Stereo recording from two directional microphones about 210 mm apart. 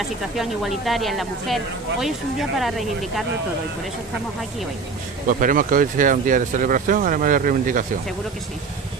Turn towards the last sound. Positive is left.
turn(degrees=-40)  # may be behind; listen again after turning